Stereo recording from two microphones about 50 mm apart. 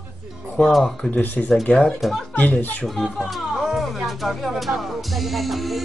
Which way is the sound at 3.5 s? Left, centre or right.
Centre.